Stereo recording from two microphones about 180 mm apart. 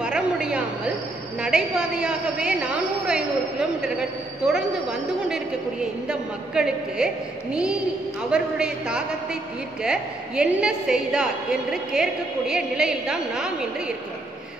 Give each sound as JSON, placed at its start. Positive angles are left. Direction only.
{"t": 0.0, "sound": "chatter", "side_deg": -5}
{"t": 1.4, "sound": "a woman's voice", "side_deg": -5}
{"t": 8.3, "sound": "a woman's voice", "side_deg": -5}